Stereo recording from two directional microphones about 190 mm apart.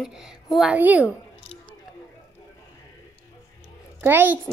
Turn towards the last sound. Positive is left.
turn(degrees=-10)  # may be behind; listen again after turning